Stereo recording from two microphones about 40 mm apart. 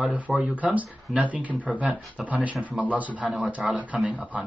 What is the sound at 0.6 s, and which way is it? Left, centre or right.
Speech, right.